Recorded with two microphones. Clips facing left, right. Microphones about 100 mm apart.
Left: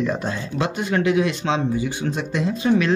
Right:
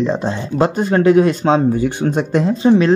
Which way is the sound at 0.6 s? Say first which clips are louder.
Right 8 dB; 40° right (ahead or behind).